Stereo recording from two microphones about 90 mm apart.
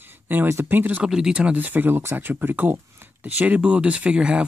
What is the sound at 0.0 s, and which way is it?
Speech, 20° right (ahead or behind).